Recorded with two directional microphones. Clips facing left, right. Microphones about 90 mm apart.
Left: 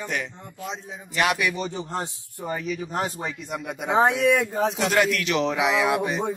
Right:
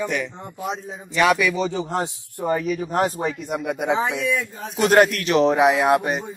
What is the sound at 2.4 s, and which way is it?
Speech, 50° right (ahead or behind).